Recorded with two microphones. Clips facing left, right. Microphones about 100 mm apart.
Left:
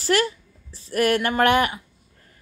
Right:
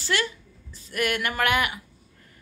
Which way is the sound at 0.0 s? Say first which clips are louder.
Left 6 dB; 40° left (ahead or behind).